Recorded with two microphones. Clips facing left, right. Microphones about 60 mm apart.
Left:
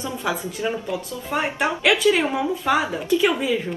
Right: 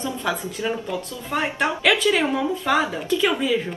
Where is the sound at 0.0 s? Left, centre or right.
Centre.